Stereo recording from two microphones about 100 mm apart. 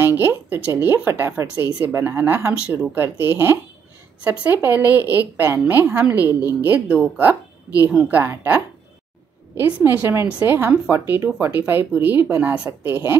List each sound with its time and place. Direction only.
0.0 s a woman's voice: 20° right (ahead or behind)
8.2 s a woman's voice: 20° right (ahead or behind)
9.8 s a woman's voice: 20° right (ahead or behind)